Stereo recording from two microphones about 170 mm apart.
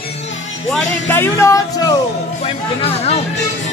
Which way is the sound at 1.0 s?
15° left (ahead or behind).